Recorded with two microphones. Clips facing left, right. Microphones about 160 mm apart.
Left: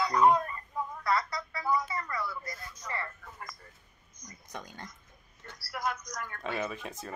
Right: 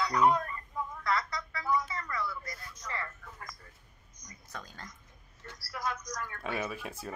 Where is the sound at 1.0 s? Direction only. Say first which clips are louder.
Left 2 dB; 30° left (ahead or behind).